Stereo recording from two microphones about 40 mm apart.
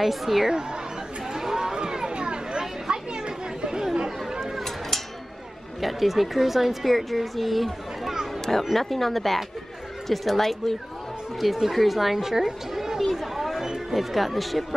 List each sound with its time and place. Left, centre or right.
0.0 s a woman's voice: centre
1.3 s chatter: centre
5.8 s a woman's voice: centre
11.3 s a woman's voice: centre
13.0 s chatter: centre